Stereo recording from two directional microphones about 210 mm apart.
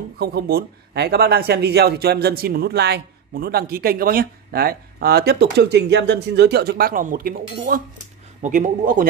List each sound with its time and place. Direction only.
0.2 s a man's voice: 50° right (ahead or behind)